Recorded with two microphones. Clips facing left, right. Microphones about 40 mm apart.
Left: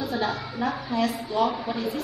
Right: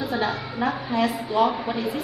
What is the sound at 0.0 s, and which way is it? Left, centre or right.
A woman's voice, centre.